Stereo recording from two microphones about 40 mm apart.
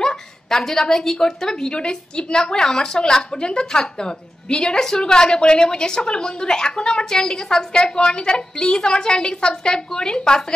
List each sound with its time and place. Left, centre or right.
0.0 s a woman's voice: centre